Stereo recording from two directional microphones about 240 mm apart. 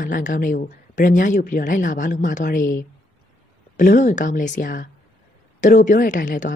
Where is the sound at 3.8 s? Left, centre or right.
Left.